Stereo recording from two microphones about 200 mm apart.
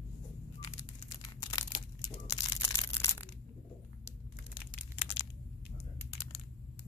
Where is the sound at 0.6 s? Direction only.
20° left (ahead or behind).